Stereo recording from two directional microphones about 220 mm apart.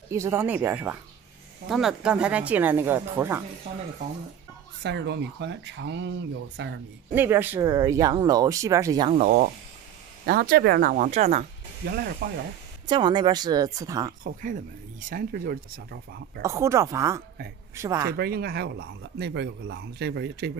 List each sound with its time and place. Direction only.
0.1 s speech: 15° right (ahead or behind)
4.8 s speech: 50° right (ahead or behind)
7.2 s speech: 10° right (ahead or behind)
9.2 s speech: 45° right (ahead or behind)
11.8 s speech: 45° right (ahead or behind)
12.8 s speech: 20° right (ahead or behind)
14.2 s speech: 35° right (ahead or behind)
16.4 s speech: 15° right (ahead or behind)
18.1 s speech: 45° right (ahead or behind)